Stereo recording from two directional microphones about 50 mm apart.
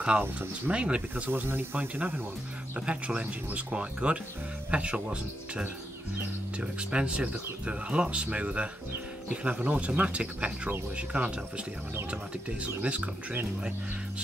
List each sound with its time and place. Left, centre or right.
0.2 s speech: right
0.7 s speech: right
1.3 s speech: right
2.9 s speech: right